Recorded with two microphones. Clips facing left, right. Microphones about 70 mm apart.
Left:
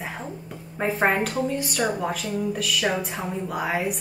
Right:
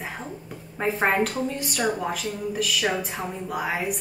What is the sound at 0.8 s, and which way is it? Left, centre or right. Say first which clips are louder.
A woman's voice: even; centre.